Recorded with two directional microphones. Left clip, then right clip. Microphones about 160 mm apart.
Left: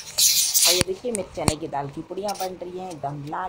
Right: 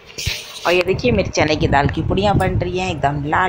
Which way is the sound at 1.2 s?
25° right (ahead or behind).